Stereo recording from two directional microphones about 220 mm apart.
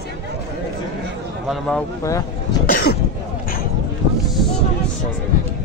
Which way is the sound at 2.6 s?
45° left (ahead or behind).